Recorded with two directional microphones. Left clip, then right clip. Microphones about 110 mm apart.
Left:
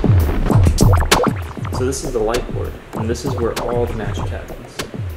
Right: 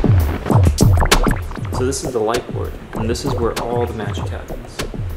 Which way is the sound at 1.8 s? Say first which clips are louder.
Even; 15° right (ahead or behind).